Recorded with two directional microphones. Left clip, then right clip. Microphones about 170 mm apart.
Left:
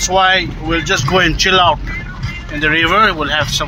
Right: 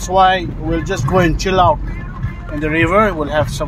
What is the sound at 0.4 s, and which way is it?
A child's voice, 15° right (ahead or behind).